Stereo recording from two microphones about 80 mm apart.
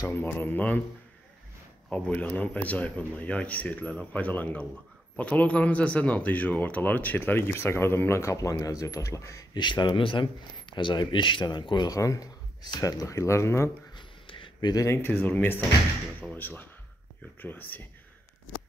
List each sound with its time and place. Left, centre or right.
0.1 s speech: left
1.9 s speech: centre
3.9 s speech: centre; by 9.5 s left
9.5 s a man's voice: left
11.9 s speech: left
12.6 s speech: left
13.9 s a sound: left
15.0 s speech: left